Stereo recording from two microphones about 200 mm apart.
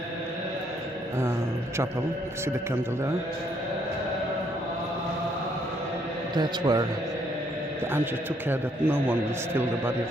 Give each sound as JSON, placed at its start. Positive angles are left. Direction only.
{"t": 6.3, "sound": "a man's voice", "side_deg": -20}
{"t": 7.9, "sound": "a man's voice", "side_deg": -10}